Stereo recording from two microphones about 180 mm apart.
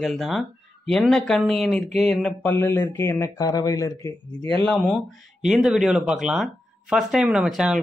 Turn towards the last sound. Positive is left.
turn(degrees=0)  # may be behind; listen again after turning